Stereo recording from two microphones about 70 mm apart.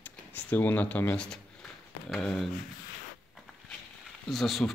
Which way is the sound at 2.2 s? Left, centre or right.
Centre.